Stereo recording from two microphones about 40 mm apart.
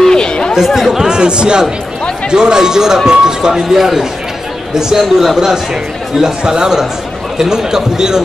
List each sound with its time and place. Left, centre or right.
0.0 s chatter: centre
0.7 s chatter: centre
1.0 s speech: right